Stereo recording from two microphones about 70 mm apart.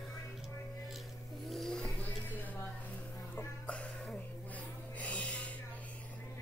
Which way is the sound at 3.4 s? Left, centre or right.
Centre.